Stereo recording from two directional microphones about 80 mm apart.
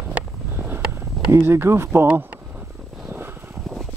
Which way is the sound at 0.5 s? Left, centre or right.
Right.